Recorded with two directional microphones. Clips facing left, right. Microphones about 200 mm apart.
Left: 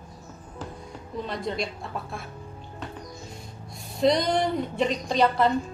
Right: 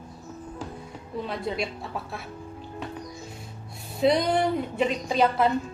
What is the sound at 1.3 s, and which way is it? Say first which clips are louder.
Speech: even; 5° right (ahead or behind).